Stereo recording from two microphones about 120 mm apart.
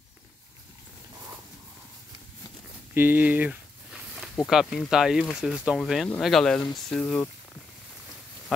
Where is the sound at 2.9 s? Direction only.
15° right (ahead or behind).